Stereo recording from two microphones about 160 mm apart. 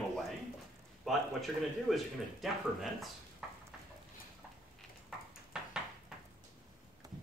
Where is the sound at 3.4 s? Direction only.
5° right (ahead or behind).